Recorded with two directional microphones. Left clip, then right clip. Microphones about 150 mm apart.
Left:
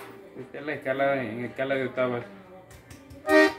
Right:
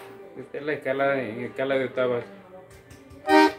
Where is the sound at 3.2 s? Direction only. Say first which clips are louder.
Right 2 dB; 10° right (ahead or behind).